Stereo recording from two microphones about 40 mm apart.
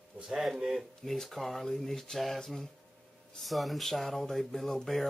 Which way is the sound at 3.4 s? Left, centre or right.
Centre.